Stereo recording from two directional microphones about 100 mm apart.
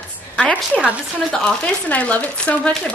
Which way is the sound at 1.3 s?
10° left (ahead or behind).